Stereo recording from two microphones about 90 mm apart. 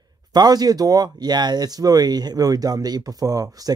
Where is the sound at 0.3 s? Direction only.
50° right (ahead or behind).